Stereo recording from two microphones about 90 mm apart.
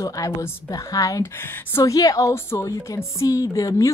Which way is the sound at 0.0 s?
40° left (ahead or behind).